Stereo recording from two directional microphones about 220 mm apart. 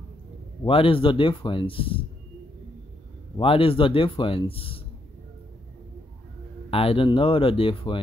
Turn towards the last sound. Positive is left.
turn(degrees=25)  # may be behind; listen again after turning